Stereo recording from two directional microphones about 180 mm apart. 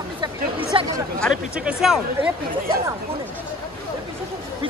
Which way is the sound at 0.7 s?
30° right (ahead or behind).